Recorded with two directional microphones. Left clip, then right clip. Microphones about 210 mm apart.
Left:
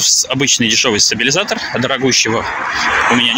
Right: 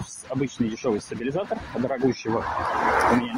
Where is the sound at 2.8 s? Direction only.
30° right (ahead or behind).